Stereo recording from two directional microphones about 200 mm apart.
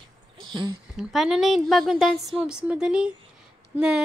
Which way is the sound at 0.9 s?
Centre (ahead or behind).